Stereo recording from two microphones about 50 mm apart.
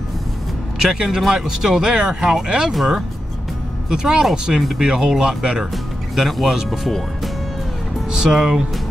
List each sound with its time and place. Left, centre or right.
0.9 s speech: centre
2.7 s speech: centre
3.9 s speech: centre
6.1 s speech: centre
8.1 s speech: centre